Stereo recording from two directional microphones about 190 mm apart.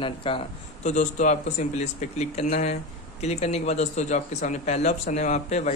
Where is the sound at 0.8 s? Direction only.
40° left (ahead or behind).